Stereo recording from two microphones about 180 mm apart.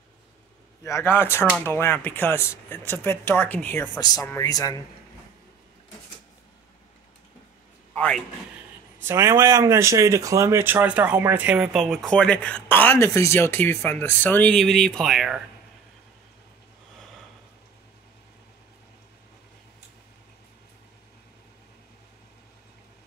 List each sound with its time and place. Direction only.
0.8 s speech: 15° left (ahead or behind)
7.9 s a sound: 5° left (ahead or behind)
9.0 s speech: 15° right (ahead or behind)